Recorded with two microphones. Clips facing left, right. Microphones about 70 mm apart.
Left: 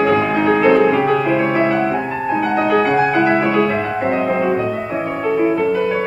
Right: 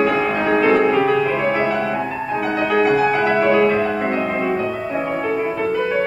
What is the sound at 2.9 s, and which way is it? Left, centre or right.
Music, left.